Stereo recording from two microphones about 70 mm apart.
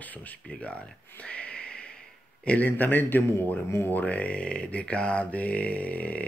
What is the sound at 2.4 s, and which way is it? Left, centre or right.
Speech, left.